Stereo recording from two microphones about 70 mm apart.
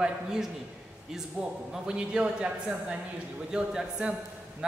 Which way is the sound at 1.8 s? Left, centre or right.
Centre.